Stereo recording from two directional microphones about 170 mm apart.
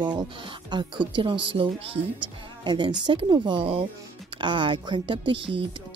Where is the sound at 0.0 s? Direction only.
25° right (ahead or behind).